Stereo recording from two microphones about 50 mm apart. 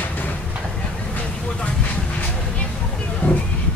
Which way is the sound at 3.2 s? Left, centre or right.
Left.